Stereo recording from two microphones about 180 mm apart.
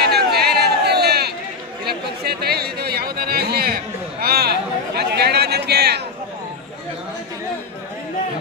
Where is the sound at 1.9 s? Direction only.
60° right (ahead or behind).